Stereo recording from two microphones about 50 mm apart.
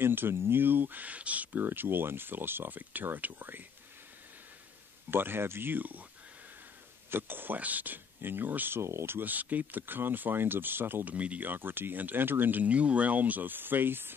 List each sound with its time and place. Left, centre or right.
0.0 s speech: right
1.7 s speech: right
5.1 s speech: right
7.1 s speech: right
8.8 s speech: right
9.2 s speech: right
11.1 s speech: right
11.4 s speech: right